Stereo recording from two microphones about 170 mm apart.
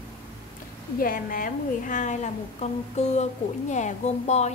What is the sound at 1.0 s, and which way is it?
A woman's voice, 55° left (ahead or behind).